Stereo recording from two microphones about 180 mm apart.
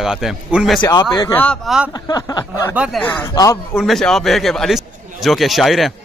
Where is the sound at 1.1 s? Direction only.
20° left (ahead or behind).